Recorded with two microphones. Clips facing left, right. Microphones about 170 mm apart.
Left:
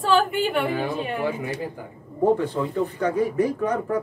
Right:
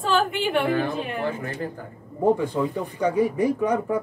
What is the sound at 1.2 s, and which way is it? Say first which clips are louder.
Speech: left 1 dB; 10° left (ahead or behind).